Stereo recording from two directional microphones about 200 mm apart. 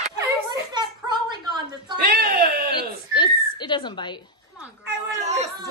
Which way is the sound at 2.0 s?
45° right (ahead or behind).